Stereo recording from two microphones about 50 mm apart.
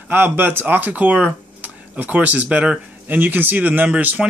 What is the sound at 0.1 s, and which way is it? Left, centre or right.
Speech, right.